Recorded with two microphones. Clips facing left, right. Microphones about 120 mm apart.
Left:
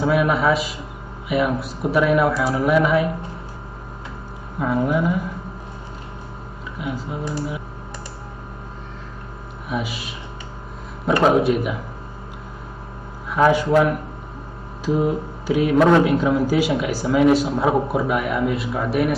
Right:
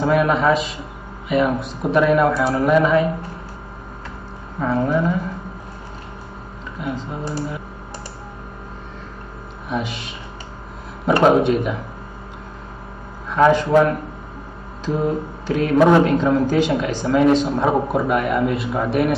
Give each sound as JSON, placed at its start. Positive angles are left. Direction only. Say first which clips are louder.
{"t": 0.0, "sound": "speech", "louder": "right 1 dB", "side_deg": 5}
{"t": 4.6, "sound": "speech", "louder": "right 1 dB", "side_deg": 10}
{"t": 6.8, "sound": "speech", "louder": "right 1 dB", "side_deg": 5}
{"t": 9.7, "sound": "speech", "louder": "right 1 dB", "side_deg": 5}
{"t": 11.2, "sound": "speech", "louder": "right 2 dB", "side_deg": 0}
{"t": 13.3, "sound": "speech", "louder": "right 2 dB", "side_deg": 10}
{"t": 14.9, "sound": "mantra", "louder": "left 1 dB", "side_deg": 5}
{"t": 16.0, "sound": "speech", "louder": "right 1 dB", "side_deg": 5}